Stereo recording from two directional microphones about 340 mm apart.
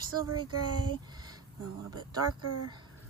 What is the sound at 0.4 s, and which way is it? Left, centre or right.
Speech, right.